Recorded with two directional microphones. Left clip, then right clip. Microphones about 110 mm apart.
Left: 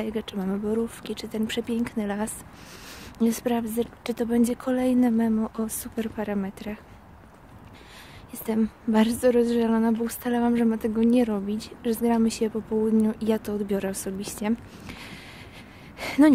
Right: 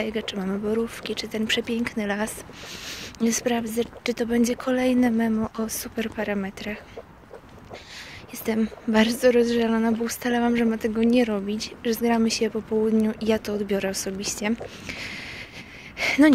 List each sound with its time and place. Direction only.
0.0 s a woman's voice: 40° left (ahead or behind)
2.8 s a woman's voice: 55° left (ahead or behind); by 6.8 s 35° left (ahead or behind)
8.5 s speech: 50° left (ahead or behind)
8.9 s a woman's voice: 40° left (ahead or behind)
16.0 s a sound: 40° left (ahead or behind)